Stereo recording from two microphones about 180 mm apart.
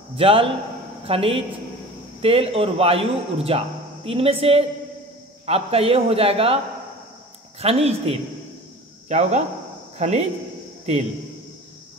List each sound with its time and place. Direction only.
0.1 s a man's voice: 30° right (ahead or behind)
7.6 s a man's voice: 35° right (ahead or behind)